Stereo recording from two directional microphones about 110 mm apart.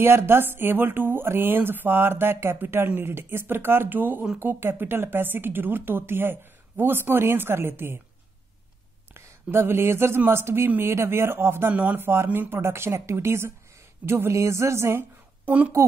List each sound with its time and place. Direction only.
0.0 s speech: 20° right (ahead or behind)
9.1 s a woman's voice: 25° right (ahead or behind)